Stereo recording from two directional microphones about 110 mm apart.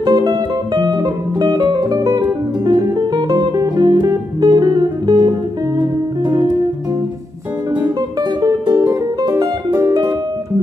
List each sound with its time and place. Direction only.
0.0 s music: 40° right (ahead or behind)
8.2 s music: 40° right (ahead or behind)